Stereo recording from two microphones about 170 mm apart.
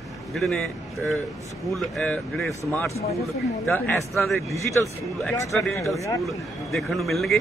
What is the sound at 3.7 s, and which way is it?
Speech, 15° left (ahead or behind).